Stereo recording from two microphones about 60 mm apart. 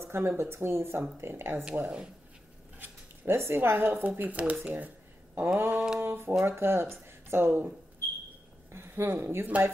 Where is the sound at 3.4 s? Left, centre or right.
Right.